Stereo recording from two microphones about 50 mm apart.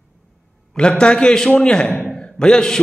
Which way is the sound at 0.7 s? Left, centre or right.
Centre.